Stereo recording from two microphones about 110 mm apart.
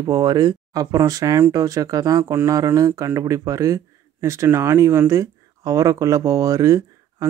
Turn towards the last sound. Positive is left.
turn(degrees=-30)  # may be behind; listen again after turning